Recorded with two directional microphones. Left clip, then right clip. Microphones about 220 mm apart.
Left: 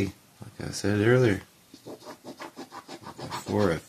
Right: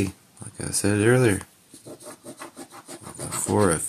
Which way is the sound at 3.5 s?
25° right (ahead or behind).